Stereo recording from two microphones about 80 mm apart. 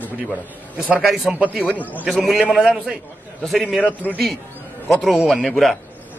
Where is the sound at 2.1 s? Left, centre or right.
Centre.